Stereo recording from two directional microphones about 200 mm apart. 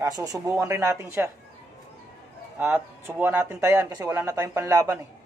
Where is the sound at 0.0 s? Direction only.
20° right (ahead or behind).